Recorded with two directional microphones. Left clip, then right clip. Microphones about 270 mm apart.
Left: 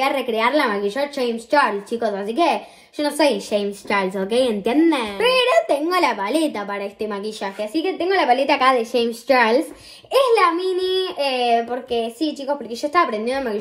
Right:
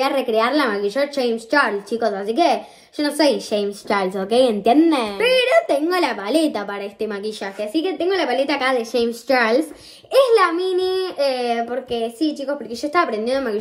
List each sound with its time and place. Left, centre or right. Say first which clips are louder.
0.1 s a woman's voice: right 1 dB; centre
7.7 s a woman's voice: left 1 dB; centre